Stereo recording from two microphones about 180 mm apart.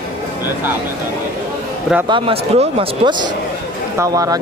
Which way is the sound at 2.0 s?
30° right (ahead or behind).